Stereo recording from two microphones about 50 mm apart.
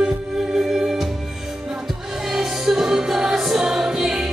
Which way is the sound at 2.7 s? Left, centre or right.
Centre.